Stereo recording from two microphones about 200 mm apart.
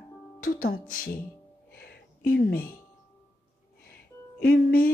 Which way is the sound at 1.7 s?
50° left (ahead or behind).